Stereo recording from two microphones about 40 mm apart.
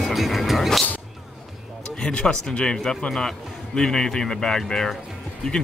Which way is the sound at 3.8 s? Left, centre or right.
Centre.